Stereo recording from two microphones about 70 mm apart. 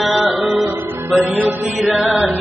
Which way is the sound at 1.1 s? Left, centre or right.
Centre.